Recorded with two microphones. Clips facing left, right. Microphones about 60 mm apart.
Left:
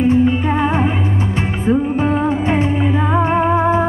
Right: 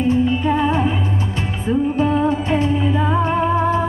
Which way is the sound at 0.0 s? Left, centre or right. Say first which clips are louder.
Left 3 dB; left.